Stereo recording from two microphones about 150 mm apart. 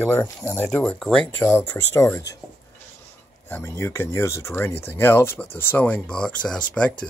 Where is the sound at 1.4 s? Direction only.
20° left (ahead or behind).